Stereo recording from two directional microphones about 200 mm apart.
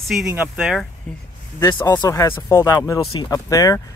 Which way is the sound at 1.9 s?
15° left (ahead or behind).